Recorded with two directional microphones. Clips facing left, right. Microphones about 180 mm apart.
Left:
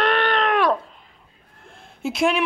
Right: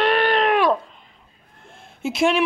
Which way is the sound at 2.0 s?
Centre (ahead or behind).